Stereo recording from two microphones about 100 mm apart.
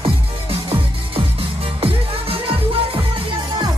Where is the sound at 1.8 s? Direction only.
65° right (ahead or behind).